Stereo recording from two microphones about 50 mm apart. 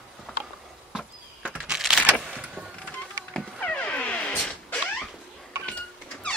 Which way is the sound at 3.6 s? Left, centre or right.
Left.